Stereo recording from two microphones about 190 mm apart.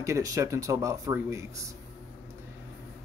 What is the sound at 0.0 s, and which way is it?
Speech, 15° right (ahead or behind).